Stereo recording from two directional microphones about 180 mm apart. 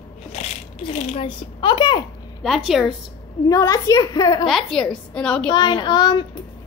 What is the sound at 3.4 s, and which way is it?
A child's voice, 20° left (ahead or behind).